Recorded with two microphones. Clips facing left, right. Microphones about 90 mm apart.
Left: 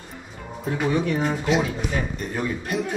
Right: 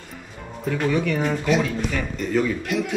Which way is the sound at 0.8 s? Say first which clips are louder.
Even; 20° left (ahead or behind).